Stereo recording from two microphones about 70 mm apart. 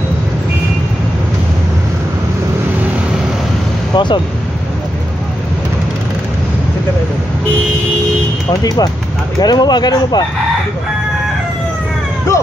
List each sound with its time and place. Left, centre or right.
3.9 s speech: left
8.5 s speech: left
9.4 s speech: left